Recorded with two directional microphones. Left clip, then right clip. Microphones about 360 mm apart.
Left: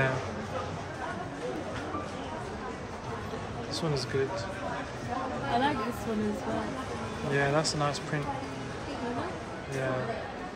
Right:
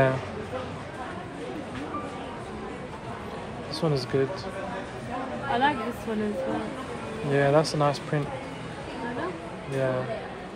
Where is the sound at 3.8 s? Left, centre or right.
Centre.